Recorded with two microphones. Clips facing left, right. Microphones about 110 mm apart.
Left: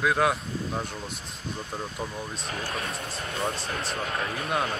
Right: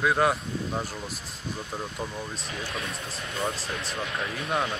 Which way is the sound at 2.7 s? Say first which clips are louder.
Left 2 dB; 30° left (ahead or behind).